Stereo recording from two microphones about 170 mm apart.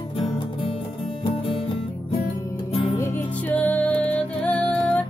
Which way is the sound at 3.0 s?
10° left (ahead or behind).